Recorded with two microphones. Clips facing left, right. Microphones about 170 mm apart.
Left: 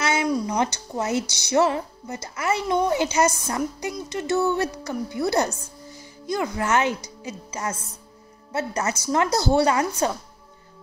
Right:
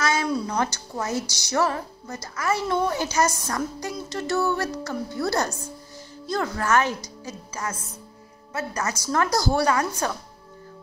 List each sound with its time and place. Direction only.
0.0 s a woman's voice: 20° left (ahead or behind)